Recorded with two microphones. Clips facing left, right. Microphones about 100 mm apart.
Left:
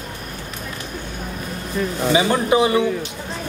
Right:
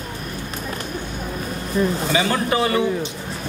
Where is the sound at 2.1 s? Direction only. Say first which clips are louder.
Left 3 dB; 15° left (ahead or behind).